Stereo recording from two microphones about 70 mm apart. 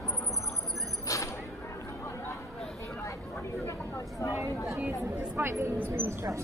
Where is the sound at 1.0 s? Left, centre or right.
Left.